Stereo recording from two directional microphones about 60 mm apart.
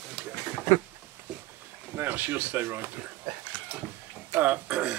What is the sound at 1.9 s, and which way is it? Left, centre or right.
Speech, right.